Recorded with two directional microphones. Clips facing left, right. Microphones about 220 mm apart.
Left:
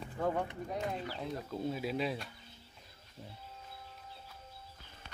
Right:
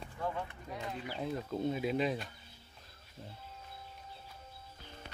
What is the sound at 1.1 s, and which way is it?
Speech, centre (ahead or behind).